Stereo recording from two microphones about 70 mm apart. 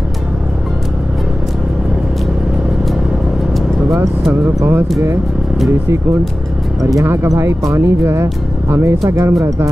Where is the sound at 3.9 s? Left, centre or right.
Right.